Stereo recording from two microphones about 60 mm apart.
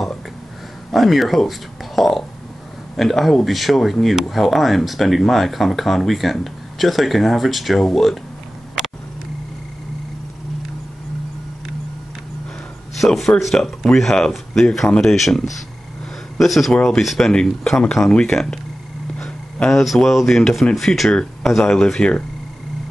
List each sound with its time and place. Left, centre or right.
0.9 s speech: centre
2.0 s a sound: centre
3.0 s speech: centre
12.9 s a man's voice: centre
16.7 s speech: centre
17.0 s speech: centre
19.1 s a sound: centre
19.7 s speech: centre
21.1 s speech: centre